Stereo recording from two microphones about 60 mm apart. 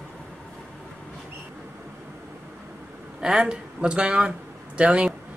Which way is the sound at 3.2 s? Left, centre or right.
Centre.